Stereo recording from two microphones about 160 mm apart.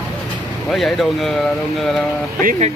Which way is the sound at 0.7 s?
Centre (ahead or behind).